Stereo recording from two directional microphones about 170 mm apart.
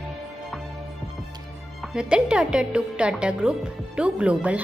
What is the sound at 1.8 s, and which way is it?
A woman's voice, 5° right (ahead or behind).